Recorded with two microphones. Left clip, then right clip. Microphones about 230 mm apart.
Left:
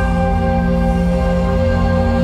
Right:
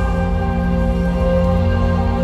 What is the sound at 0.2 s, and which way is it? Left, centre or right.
Music, left.